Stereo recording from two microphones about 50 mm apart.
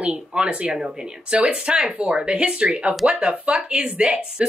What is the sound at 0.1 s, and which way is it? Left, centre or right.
Speech, centre.